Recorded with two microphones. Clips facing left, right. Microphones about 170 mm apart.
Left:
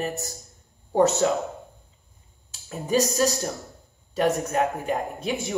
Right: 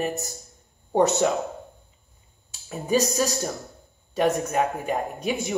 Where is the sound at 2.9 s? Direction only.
15° right (ahead or behind).